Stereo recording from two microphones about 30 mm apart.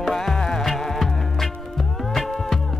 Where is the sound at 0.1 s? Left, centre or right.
Centre.